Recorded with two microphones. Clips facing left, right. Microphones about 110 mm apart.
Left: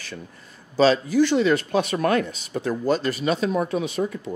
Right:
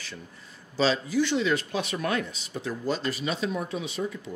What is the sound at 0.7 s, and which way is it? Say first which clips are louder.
Speech: left 7 dB; 50° left (ahead or behind).